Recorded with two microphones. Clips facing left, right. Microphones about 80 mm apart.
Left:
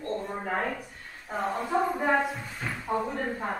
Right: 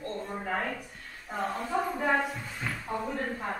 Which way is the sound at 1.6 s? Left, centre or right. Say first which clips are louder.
Left 4 dB; centre.